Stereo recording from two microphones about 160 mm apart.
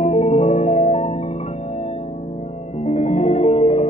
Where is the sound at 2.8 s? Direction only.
45° left (ahead or behind).